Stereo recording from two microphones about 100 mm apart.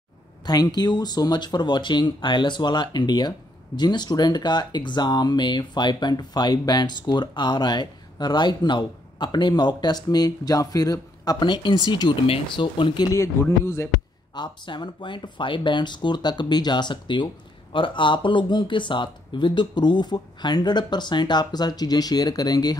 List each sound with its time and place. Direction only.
0.5 s speech: 45° left (ahead or behind)
13.1 s speech: 30° left (ahead or behind)
14.3 s speech: 50° left (ahead or behind)